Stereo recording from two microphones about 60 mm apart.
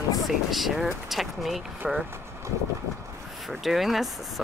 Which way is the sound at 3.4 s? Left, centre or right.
Centre.